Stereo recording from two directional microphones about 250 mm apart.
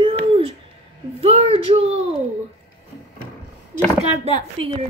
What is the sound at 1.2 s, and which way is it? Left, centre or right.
Speech, right.